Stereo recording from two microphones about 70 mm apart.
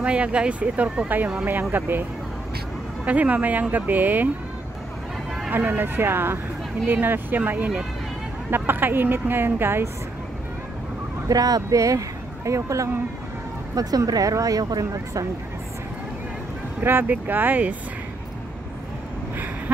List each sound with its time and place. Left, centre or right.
0.0 s speech: centre
3.1 s speech: right
5.5 s speech: right
11.2 s speech: right
13.7 s speech: right
16.8 s speech: right